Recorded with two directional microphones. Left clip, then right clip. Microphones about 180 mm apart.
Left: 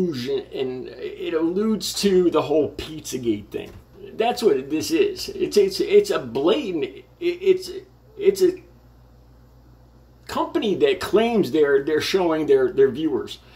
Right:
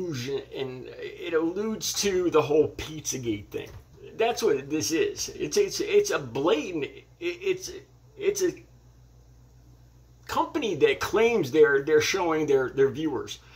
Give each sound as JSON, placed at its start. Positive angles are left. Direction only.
{"t": 0.1, "sound": "speech", "side_deg": 15}
{"t": 10.3, "sound": "speech", "side_deg": 10}